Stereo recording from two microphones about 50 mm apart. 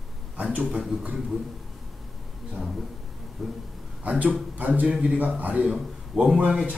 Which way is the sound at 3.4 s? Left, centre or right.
Centre.